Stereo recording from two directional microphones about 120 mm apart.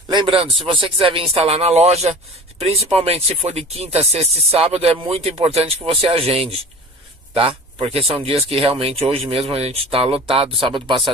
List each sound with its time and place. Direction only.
0.1 s speech: 40° right (ahead or behind)